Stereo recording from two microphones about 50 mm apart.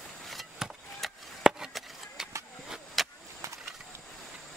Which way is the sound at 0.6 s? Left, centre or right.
Centre.